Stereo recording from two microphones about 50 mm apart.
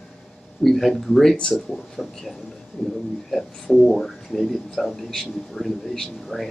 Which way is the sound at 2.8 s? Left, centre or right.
Left.